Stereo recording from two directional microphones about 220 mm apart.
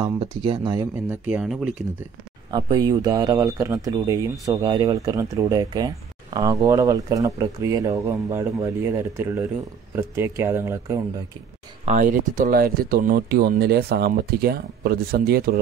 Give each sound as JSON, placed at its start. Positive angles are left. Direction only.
{"t": 0.0, "sound": "speech", "side_deg": -25}
{"t": 1.0, "sound": "speech", "side_deg": -5}
{"t": 2.5, "sound": "speech", "side_deg": -20}
{"t": 11.8, "sound": "speech", "side_deg": -35}